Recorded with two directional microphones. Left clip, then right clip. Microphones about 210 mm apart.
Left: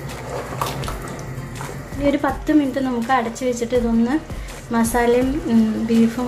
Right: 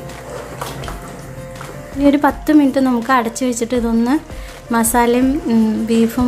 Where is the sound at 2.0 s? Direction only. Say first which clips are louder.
Right 6 dB; 30° right (ahead or behind).